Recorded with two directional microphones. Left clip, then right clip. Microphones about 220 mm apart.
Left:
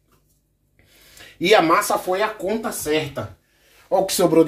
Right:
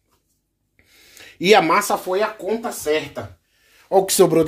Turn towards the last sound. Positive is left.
turn(degrees=-45)  # may be behind; listen again after turning